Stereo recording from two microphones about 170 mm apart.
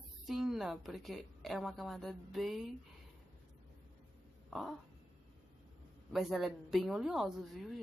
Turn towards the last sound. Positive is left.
turn(degrees=0)  # may be behind; listen again after turning